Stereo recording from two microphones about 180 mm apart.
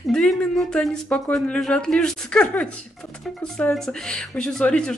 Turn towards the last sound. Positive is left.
turn(degrees=5)  # may be behind; listen again after turning